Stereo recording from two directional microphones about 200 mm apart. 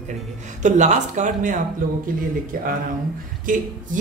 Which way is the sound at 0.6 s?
35° right (ahead or behind).